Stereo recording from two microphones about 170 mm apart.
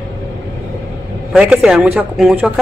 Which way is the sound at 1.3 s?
5° right (ahead or behind).